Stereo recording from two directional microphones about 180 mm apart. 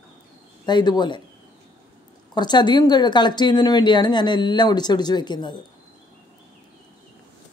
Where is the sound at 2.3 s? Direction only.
25° left (ahead or behind).